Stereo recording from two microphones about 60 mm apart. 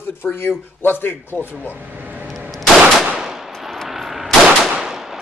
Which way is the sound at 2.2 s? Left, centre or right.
Centre.